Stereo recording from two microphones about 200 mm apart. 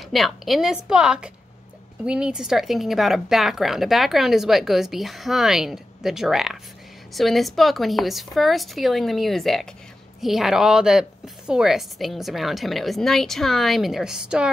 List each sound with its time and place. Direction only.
0.1 s speech: centre (ahead or behind)